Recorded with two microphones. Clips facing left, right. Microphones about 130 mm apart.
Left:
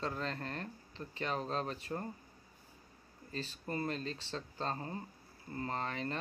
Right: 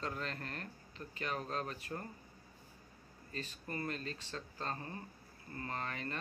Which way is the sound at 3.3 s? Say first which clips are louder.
Left 4 dB; 30° left (ahead or behind).